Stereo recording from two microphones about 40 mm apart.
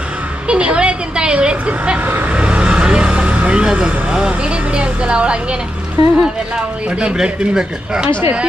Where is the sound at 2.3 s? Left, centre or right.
Right.